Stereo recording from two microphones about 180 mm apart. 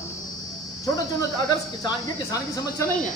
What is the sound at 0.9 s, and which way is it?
Speech, 20° left (ahead or behind).